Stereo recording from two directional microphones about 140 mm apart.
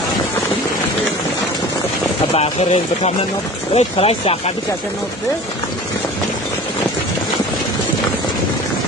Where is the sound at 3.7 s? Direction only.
45° left (ahead or behind).